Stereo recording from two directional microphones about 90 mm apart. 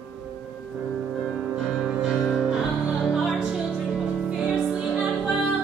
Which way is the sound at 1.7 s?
5° right (ahead or behind).